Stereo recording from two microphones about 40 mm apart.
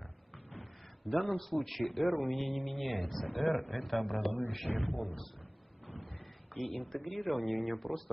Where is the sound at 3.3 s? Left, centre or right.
Left.